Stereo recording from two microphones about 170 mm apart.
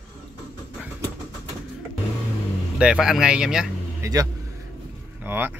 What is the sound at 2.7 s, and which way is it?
Speech, 5° right (ahead or behind).